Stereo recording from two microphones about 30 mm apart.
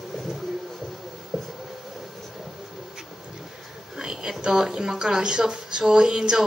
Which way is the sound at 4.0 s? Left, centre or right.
Right.